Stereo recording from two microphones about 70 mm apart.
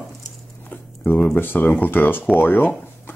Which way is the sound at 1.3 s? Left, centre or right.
Left.